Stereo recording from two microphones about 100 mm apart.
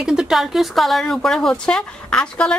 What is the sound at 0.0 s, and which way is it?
Speech, 5° right (ahead or behind).